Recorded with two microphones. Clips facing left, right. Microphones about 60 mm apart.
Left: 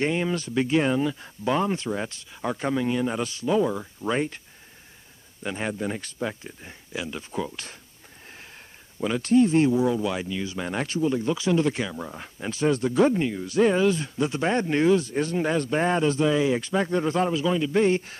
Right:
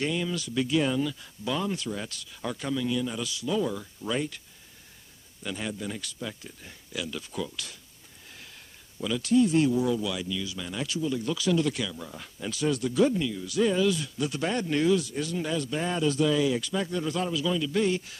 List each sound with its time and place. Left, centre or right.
0.0 s speech: left
5.4 s speech: left
9.0 s speech: left